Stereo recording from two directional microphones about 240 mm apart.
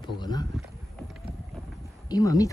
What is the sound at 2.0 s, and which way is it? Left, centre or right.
Speech, centre.